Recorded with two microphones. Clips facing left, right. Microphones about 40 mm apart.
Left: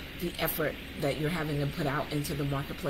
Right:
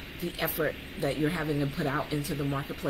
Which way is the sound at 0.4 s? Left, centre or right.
Centre.